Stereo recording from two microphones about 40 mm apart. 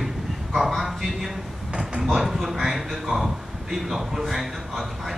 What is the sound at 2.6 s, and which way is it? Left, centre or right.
A man's voice, centre.